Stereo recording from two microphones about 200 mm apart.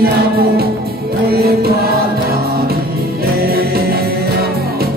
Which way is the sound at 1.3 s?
50° right (ahead or behind).